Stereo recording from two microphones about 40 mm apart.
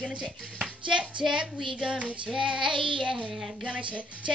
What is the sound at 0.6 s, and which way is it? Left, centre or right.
Music, right.